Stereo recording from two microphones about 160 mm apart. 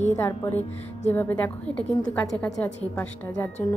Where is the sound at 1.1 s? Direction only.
10° left (ahead or behind).